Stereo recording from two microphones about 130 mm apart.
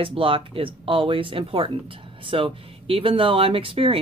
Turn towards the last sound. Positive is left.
turn(degrees=-45)  # may be behind; listen again after turning